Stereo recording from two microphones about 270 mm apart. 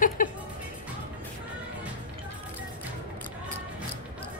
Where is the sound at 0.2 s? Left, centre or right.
Left.